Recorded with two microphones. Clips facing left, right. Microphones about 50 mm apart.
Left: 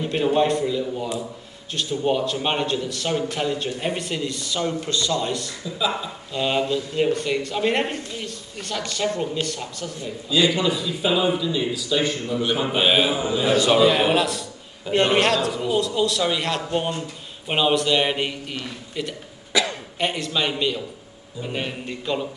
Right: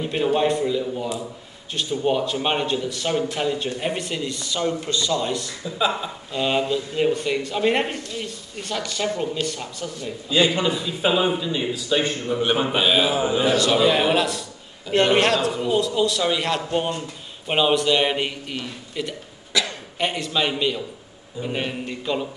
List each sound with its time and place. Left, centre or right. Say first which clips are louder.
0.0 s a man's voice: left 1 dB; centre
10.3 s speech: even; right
12.7 s a man's voice: left 2 dB; centre
13.1 s speech: right 2 dB; right
13.5 s a man's voice: left 4 dB; centre
13.7 s a man's voice: left 1 dB; centre
19.5 s cough: left 2 dB; centre
20.0 s a man's voice: right 1 dB; centre